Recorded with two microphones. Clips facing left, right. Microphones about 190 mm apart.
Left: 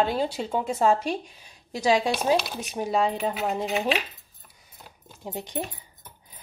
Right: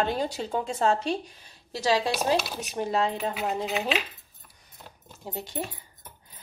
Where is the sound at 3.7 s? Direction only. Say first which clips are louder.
Left 3 dB; 30° left (ahead or behind).